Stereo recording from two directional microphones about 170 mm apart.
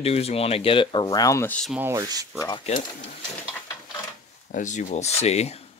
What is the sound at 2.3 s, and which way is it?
Speech, 25° left (ahead or behind).